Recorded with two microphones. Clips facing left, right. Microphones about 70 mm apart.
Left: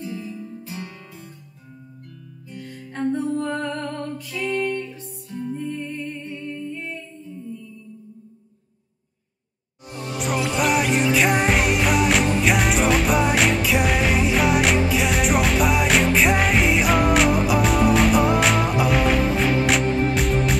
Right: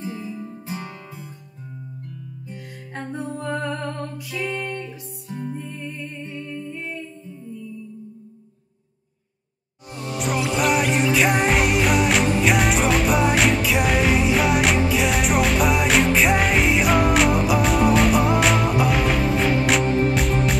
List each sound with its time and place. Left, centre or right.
0.0 s music: right
2.4 s music: centre
5.6 s music: centre
6.1 s humming: centre
6.5 s humming: right
9.8 s music: centre